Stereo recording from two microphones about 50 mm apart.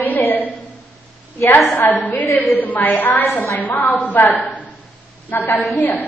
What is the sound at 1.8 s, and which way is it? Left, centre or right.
A woman's voice, left.